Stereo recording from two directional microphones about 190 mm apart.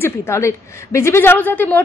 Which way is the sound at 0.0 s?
15° left (ahead or behind).